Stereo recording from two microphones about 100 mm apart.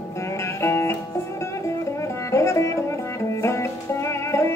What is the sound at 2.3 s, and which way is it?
Music, 30° left (ahead or behind).